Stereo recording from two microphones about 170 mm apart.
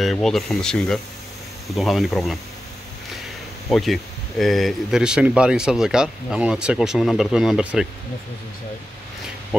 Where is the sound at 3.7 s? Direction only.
Centre (ahead or behind).